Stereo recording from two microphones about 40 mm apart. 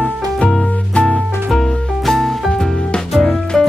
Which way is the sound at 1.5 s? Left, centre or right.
Centre.